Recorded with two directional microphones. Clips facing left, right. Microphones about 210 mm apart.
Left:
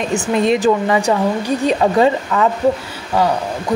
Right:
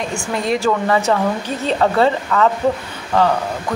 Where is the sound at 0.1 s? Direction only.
20° left (ahead or behind).